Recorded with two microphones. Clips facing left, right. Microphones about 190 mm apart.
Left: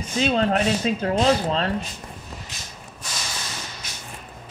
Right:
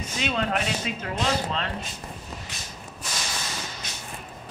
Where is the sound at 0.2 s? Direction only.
35° left (ahead or behind).